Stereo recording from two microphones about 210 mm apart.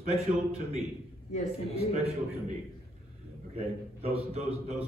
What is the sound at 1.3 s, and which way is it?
Speech, 30° left (ahead or behind).